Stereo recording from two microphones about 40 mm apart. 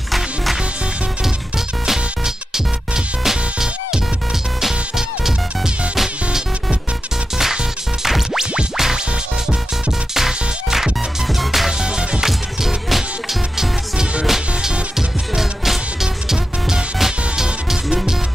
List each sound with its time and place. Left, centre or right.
1.9 s music: centre
8.0 s music: centre
10.1 s music: centre
11.8 s music: right
12.3 s music: centre